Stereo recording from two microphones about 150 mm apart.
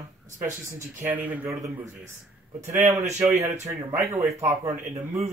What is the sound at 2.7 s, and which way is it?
Speech, 20° right (ahead or behind).